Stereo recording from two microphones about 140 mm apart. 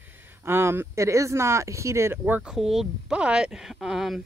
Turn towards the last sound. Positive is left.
turn(degrees=-5)  # may be behind; listen again after turning